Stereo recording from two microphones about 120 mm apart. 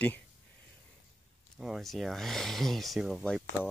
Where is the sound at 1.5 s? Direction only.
5° right (ahead or behind).